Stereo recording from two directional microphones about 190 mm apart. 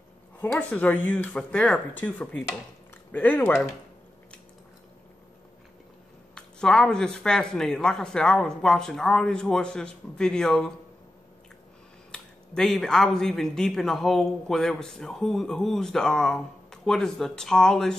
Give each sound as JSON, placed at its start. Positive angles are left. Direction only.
{"t": 0.4, "sound": "speech", "side_deg": 5}
{"t": 6.3, "sound": "speech", "side_deg": 5}
{"t": 12.1, "sound": "speech", "side_deg": 5}